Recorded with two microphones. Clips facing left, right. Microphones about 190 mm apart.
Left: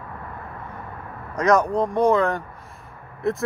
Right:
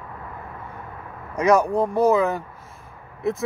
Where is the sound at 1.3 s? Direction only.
10° right (ahead or behind).